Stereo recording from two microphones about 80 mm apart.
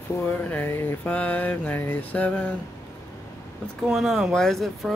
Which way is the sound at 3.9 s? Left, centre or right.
Centre.